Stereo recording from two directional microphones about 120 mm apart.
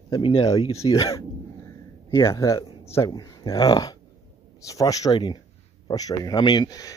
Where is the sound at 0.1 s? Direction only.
50° left (ahead or behind).